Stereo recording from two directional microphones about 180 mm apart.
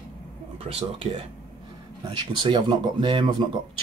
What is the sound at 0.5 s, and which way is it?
Speech, 30° right (ahead or behind).